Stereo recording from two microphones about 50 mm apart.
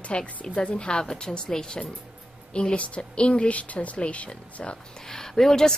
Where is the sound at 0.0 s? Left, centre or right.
Left.